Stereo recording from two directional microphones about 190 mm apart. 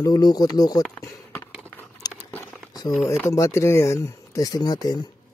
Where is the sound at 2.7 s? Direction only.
20° left (ahead or behind).